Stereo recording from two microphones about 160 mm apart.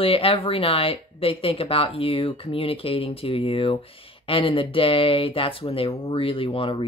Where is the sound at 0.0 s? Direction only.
35° left (ahead or behind).